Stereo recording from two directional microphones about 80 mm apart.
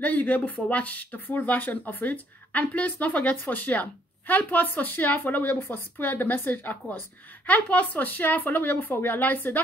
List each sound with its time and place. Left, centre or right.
0.0 s speech: left